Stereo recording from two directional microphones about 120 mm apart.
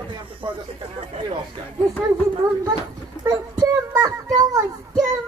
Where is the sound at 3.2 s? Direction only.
25° right (ahead or behind).